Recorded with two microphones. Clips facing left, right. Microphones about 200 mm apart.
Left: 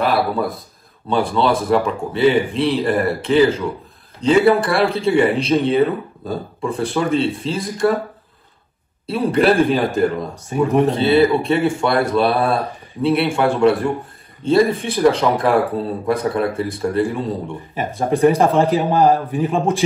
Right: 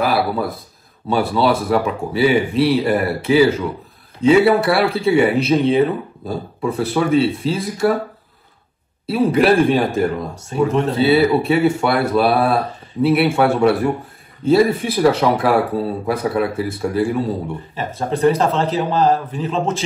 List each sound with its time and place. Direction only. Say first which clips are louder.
0.0 s a sound: even; 5° right (ahead or behind)
1.0 s a man's voice: right 1 dB; 5° right (ahead or behind)
9.0 s speech: right 1 dB; 5° right (ahead or behind)
10.4 s speech: left 2 dB; 15° left (ahead or behind)
11.0 s a man's voice: even; 5° right (ahead or behind)
17.7 s speech: left 4 dB; 15° left (ahead or behind)